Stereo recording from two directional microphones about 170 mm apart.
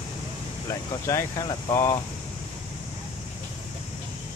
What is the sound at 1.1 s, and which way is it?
Speech, 20° left (ahead or behind).